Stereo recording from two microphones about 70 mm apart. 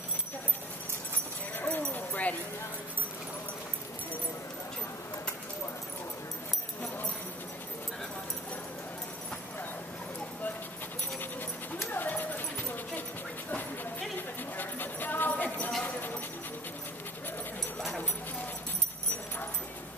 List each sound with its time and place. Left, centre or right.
1.6 s clip-clop: left
11.9 s dog: left
14.6 s dog: left